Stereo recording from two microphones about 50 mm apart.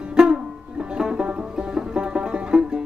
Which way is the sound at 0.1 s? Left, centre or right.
Centre.